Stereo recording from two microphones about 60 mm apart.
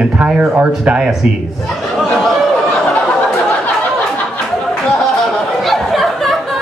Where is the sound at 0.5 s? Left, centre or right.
Right.